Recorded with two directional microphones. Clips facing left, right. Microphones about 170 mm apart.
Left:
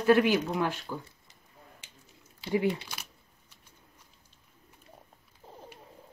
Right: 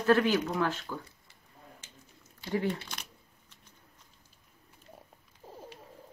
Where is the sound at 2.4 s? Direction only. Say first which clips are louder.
Left 3 dB; 10° left (ahead or behind).